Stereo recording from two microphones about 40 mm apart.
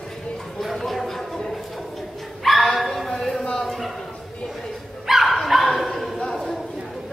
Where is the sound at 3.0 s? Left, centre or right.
Centre.